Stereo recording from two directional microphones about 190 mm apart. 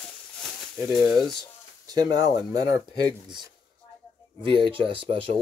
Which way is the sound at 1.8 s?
20° right (ahead or behind).